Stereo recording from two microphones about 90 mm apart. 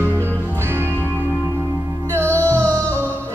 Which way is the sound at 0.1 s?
25° right (ahead or behind).